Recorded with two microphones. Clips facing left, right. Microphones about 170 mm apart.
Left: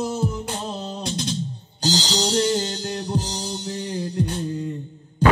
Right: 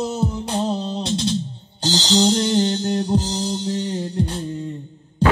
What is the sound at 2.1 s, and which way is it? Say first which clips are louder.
Music: right 6 dB; 25° right (ahead or behind).